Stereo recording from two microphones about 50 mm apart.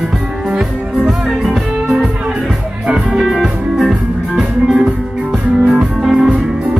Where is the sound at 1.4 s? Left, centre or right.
Centre.